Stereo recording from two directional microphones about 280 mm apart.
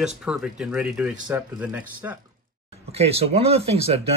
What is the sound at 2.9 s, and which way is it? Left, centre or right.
Speech, right.